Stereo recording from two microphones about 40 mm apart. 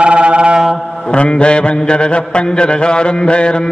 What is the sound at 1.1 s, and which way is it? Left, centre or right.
Mantra, left.